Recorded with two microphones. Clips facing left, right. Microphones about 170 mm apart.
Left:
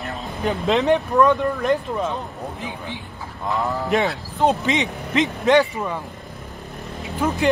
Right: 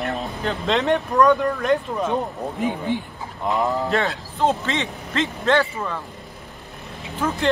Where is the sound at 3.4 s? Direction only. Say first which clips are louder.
Right 2 dB; 20° right (ahead or behind).